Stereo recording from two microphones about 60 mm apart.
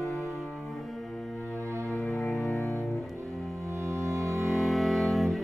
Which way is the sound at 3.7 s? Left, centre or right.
Right.